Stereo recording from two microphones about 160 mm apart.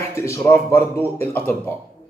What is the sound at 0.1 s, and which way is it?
A man's voice, 20° left (ahead or behind).